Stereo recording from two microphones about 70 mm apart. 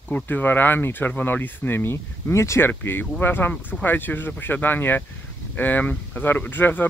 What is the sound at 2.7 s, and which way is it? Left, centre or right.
Speech, left.